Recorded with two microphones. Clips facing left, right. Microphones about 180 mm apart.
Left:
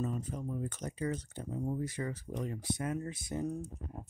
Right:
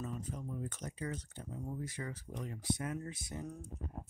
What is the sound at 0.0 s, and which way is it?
Speech, 40° left (ahead or behind).